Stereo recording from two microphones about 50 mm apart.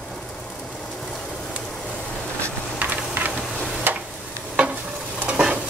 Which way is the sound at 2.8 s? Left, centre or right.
Right.